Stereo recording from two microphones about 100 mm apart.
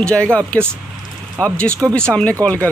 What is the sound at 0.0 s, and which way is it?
Speech, 10° left (ahead or behind).